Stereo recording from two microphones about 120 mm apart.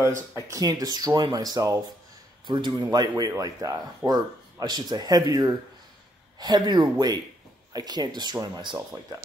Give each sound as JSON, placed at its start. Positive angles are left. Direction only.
{"t": 0.5, "sound": "speech", "side_deg": -30}